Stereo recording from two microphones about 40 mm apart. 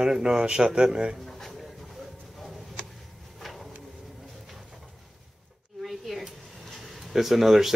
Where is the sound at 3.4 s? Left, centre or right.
Centre.